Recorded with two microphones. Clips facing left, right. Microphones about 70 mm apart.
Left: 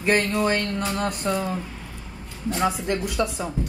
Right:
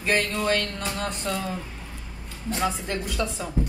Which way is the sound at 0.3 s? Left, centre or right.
Left.